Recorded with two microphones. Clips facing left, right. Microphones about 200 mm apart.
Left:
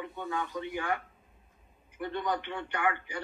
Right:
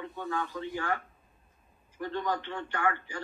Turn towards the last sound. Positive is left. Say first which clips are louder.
# even
turn(degrees=15)  # may be behind; listen again after turning